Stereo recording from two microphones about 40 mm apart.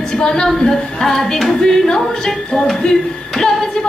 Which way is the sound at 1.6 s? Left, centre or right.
Centre.